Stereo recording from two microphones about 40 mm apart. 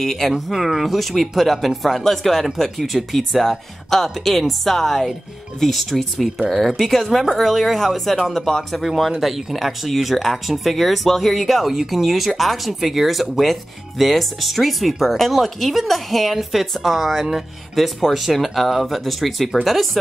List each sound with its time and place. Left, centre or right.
0.0 s speech: centre
8.8 s speech: centre